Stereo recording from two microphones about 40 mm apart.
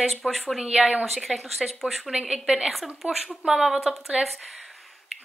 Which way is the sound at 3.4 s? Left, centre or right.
Centre.